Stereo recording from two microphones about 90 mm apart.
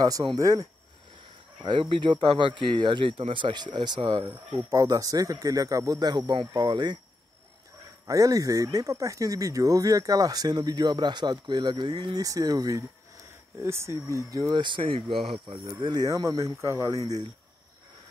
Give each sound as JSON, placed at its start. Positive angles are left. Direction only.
{"t": 0.0, "sound": "speech", "side_deg": -50}
{"t": 1.6, "sound": "speech", "side_deg": -60}
{"t": 4.3, "sound": "speech", "side_deg": -25}
{"t": 4.7, "sound": "speech", "side_deg": -40}
{"t": 8.1, "sound": "speech", "side_deg": -40}
{"t": 13.6, "sound": "speech", "side_deg": -30}
{"t": 14.5, "sound": "speech", "side_deg": -60}
{"t": 15.2, "sound": "speech", "side_deg": -60}
{"t": 16.1, "sound": "speech", "side_deg": -40}